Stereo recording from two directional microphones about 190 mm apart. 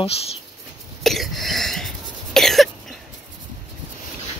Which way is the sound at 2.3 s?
Centre (ahead or behind).